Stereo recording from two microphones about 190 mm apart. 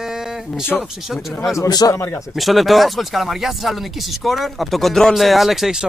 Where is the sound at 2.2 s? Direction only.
Centre (ahead or behind).